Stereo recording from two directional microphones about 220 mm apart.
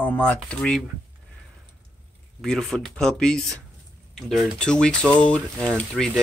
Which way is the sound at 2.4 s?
Centre (ahead or behind).